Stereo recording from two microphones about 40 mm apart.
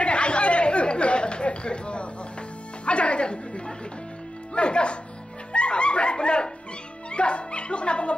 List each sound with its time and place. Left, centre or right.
0.0 s chatter: left
2.8 s music: left